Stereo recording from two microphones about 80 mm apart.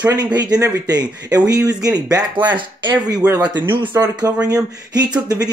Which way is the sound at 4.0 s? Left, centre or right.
Right.